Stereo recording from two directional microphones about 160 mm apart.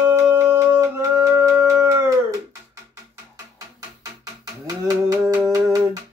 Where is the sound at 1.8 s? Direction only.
20° right (ahead or behind).